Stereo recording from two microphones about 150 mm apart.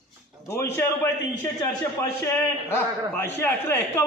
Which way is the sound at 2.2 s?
15° left (ahead or behind).